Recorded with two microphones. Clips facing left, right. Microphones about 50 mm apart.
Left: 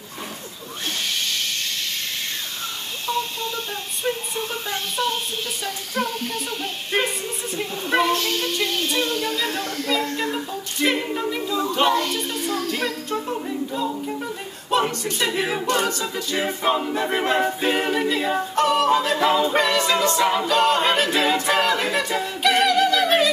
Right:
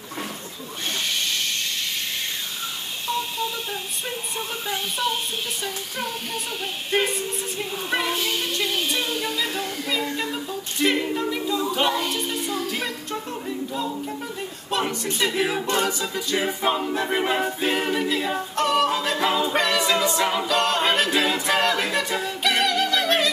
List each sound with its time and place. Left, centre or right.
3.1 s hiss: centre
4.4 s a sound: centre
11.6 s music: centre
13.3 s a capella: centre
17.4 s a capella: centre